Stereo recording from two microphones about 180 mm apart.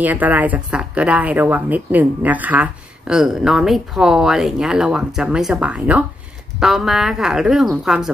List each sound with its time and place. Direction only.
0.0 s speech: 10° right (ahead or behind)